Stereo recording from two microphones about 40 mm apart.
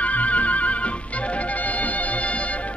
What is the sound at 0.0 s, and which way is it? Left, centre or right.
Music, left.